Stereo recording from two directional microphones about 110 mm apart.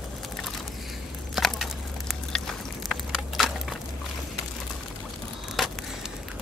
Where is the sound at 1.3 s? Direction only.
Centre (ahead or behind).